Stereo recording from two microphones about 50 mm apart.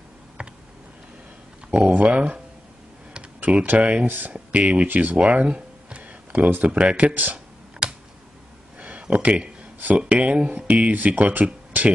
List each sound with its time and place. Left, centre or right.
0.4 s computer keyboard: right
1.7 s speech: right
3.7 s speech: right
4.8 s speech: right
5.1 s a sound: right
6.5 s speech: right
7.8 s computer keyboard: centre
8.7 s a sound: right
9.8 s speech: right